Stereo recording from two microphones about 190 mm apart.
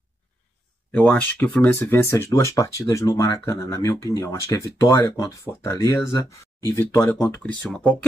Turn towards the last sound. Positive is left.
turn(degrees=5)  # may be behind; listen again after turning